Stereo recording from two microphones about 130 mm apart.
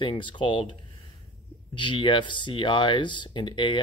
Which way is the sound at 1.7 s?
40° left (ahead or behind).